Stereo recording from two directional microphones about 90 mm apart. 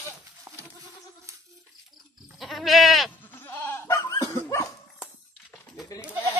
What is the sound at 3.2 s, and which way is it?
Goat, 20° left (ahead or behind).